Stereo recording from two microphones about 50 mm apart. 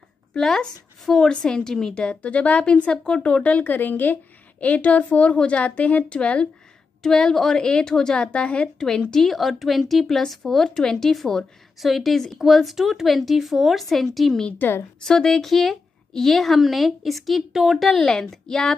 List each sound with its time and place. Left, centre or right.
0.3 s a woman's voice: centre
2.0 s speech: left
7.0 s a woman's voice: centre
14.6 s a woman's voice: left
15.0 s speech: centre
17.9 s a woman's voice: centre